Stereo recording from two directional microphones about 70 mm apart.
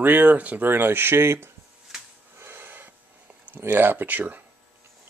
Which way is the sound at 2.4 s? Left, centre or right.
Right.